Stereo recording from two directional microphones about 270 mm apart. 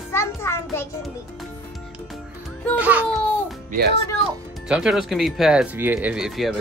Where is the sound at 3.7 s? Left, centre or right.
Right.